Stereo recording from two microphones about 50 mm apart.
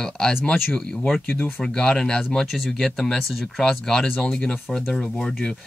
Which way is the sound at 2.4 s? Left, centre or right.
Centre.